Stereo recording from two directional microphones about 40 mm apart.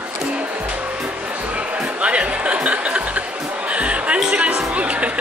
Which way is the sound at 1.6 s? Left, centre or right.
Right.